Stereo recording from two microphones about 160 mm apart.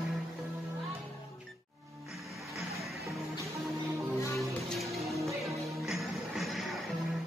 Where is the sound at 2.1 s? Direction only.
Centre (ahead or behind).